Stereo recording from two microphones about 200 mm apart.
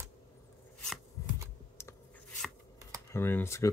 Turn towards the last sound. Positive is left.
turn(degrees=10)  # may be behind; listen again after turning